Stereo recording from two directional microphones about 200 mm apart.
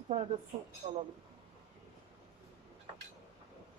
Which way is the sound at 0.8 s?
30° right (ahead or behind).